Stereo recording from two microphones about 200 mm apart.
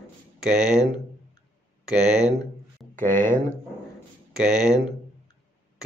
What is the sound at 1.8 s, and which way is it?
Speech, 5° right (ahead or behind).